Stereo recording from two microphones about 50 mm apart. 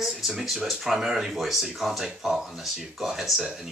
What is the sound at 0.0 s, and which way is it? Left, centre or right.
A woman's voice, centre.